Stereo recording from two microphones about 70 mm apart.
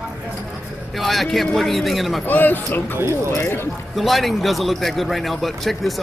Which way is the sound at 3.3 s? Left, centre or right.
Left.